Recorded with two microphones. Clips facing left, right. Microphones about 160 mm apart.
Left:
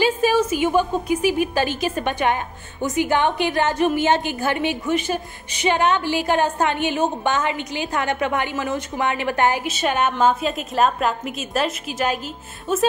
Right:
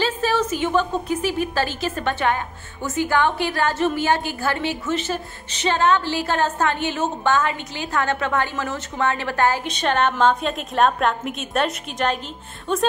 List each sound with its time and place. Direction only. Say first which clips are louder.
0.0 s a woman's voice: left 3 dB; 15° left (ahead or behind)